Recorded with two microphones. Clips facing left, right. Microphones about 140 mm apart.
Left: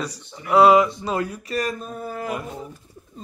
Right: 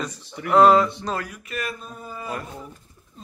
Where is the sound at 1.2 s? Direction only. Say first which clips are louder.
Left 6 dB; 30° left (ahead or behind).